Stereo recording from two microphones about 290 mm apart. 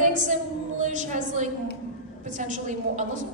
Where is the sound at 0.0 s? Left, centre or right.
Right.